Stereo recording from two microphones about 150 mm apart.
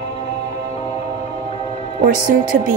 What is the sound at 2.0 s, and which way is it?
Speech, 60° right (ahead or behind).